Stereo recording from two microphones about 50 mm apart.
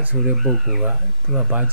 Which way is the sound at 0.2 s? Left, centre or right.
Centre.